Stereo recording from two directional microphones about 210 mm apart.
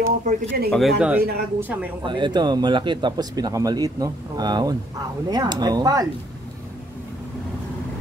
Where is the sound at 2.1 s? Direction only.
20° right (ahead or behind).